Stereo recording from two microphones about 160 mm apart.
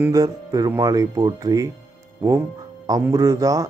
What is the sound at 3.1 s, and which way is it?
Speech, 20° right (ahead or behind).